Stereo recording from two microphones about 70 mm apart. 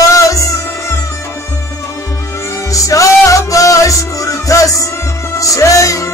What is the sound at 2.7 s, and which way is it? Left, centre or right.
Music, left.